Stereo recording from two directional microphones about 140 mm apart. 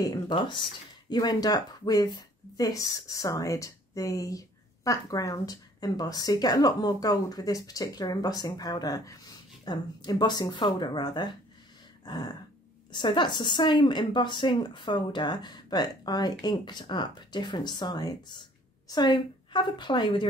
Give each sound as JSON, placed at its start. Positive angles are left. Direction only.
{"t": 0.0, "sound": "a woman's voice", "side_deg": 30}
{"t": 12.0, "sound": "a sound", "side_deg": 30}
{"t": 12.9, "sound": "a woman's voice", "side_deg": 35}